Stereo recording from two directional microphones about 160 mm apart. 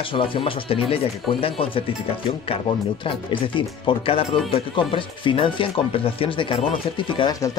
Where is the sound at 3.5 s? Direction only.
35° left (ahead or behind).